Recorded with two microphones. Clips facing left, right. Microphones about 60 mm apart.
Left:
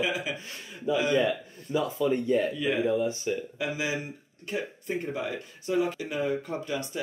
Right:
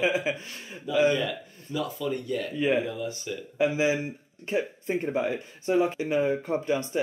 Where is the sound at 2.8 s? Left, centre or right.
Left.